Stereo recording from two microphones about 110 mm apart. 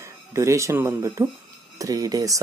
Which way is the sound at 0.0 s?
25° right (ahead or behind).